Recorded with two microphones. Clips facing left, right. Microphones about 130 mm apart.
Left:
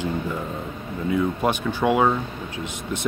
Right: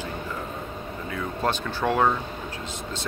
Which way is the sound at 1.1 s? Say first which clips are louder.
Left 5 dB; 15° left (ahead or behind).